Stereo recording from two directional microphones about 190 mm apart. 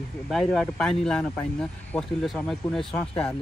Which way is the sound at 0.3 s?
Centre (ahead or behind).